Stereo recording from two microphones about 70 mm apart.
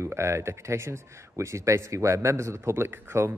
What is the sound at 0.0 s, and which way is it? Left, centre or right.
Speech, right.